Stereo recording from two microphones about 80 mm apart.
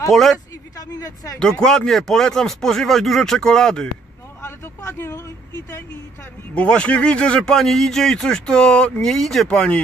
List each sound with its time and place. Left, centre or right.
0.1 s a man's voice: centre
0.7 s speech: left
1.4 s speech: centre
4.4 s vehicle: left
6.5 s speech: centre